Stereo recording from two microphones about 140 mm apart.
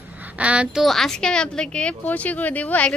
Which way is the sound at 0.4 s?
10° right (ahead or behind).